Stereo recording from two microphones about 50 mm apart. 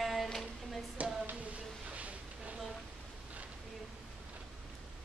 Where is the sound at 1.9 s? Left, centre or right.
Right.